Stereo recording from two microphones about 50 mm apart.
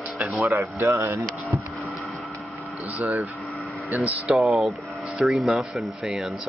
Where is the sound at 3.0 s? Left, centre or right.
Right.